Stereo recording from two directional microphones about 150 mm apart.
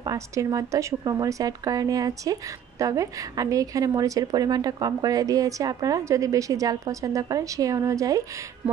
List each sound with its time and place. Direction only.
0.0 s a woman's voice: 20° right (ahead or behind)